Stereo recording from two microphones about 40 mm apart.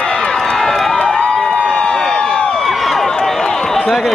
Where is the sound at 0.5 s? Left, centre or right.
Centre.